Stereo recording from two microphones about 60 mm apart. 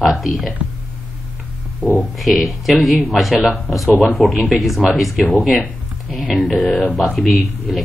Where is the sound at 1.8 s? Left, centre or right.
Centre.